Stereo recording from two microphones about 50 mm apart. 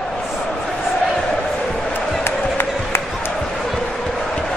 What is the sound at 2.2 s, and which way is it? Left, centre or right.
Music, left.